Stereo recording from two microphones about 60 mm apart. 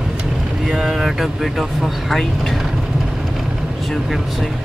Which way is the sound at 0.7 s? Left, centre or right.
Centre.